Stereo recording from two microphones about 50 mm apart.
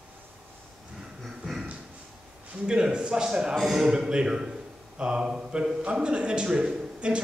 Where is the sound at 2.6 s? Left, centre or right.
Centre.